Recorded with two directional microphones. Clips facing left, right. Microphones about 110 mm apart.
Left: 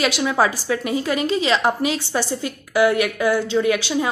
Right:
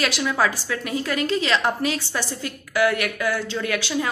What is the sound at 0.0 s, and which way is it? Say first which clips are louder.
A woman's voice: left 3 dB; 20° left (ahead or behind).